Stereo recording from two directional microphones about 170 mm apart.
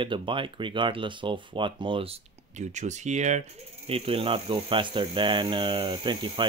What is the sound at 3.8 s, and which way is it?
Speech, 35° right (ahead or behind).